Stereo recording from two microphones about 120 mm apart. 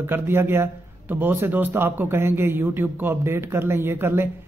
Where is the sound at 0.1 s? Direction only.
20° right (ahead or behind).